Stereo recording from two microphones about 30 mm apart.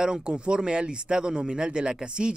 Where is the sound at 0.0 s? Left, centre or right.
Right.